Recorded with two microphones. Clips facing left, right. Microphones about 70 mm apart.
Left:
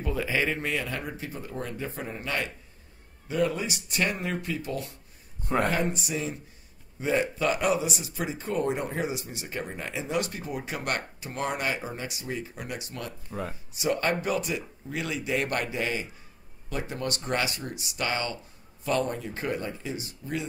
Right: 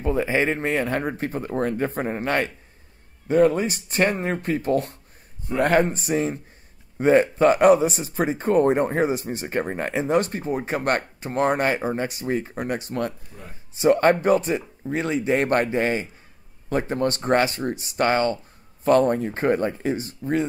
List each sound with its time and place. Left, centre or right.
0.0 s speech: right
5.6 s speech: right
5.9 s speech: right
13.3 s speech: left
13.7 s speech: right